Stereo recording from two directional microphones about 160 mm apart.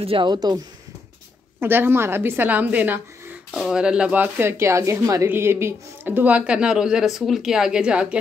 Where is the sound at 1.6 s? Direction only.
15° right (ahead or behind).